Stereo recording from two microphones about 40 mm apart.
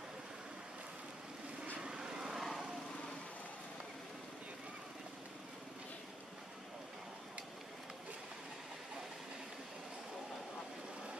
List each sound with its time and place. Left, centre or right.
1.8 s vehicle: centre